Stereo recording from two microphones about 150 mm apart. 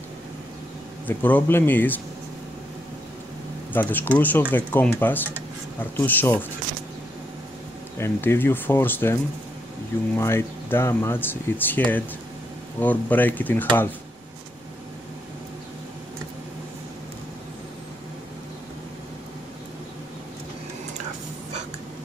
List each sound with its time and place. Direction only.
1.0 s speech: 10° left (ahead or behind)
3.7 s speech: 15° left (ahead or behind)
8.0 s speech: 15° left (ahead or behind)